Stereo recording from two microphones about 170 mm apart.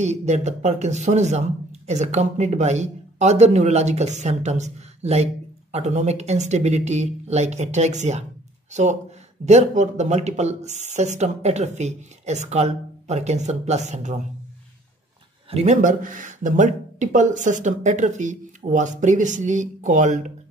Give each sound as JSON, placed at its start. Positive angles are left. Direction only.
{"t": 0.0, "sound": "speech", "side_deg": -40}
{"t": 9.5, "sound": "speech", "side_deg": -45}
{"t": 15.5, "sound": "speech", "side_deg": -45}